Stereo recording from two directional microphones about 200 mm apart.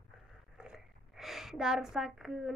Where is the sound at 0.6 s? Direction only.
5° right (ahead or behind).